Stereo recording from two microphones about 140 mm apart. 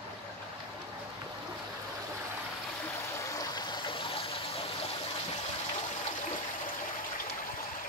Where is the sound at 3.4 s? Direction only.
30° left (ahead or behind).